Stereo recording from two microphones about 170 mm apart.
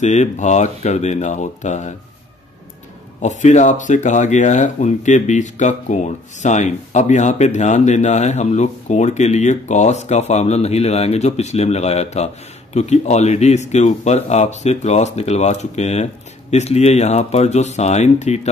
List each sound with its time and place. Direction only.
0.0 s speech: 45° left (ahead or behind)
3.2 s speech: 45° left (ahead or behind)